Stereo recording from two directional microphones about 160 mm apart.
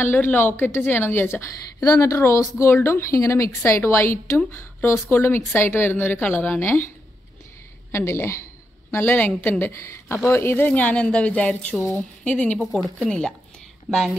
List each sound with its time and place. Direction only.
0.0 s a woman's voice: 10° left (ahead or behind)
7.9 s a woman's voice: 15° left (ahead or behind); by 14.1 s centre (ahead or behind)